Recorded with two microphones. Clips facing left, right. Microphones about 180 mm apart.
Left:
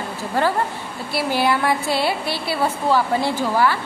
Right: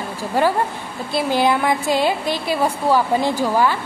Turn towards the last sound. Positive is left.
turn(degrees=-15)  # may be behind; listen again after turning